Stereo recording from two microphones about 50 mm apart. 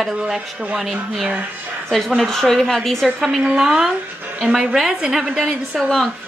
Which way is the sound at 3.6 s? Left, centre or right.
Centre.